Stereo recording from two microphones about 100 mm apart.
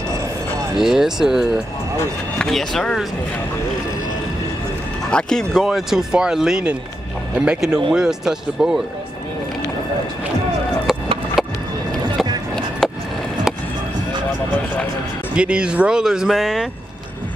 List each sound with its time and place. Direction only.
0.8 s speech: 5° right (ahead or behind)
5.1 s speech: 5° left (ahead or behind)
11.4 s music: centre (ahead or behind)
12.8 s a sound: centre (ahead or behind)
15.3 s speech: 10° right (ahead or behind)